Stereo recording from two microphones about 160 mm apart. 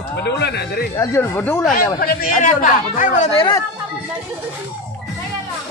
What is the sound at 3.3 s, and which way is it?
Speech, 20° left (ahead or behind).